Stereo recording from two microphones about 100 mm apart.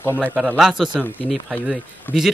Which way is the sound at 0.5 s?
5° right (ahead or behind).